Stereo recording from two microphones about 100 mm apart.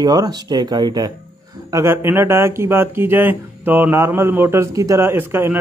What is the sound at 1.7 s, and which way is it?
Speech, 25° right (ahead or behind).